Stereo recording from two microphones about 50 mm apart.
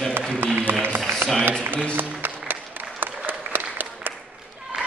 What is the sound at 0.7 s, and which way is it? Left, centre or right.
Run, right.